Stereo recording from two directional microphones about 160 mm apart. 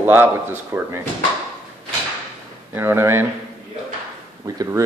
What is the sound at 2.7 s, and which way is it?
Speech, 15° right (ahead or behind).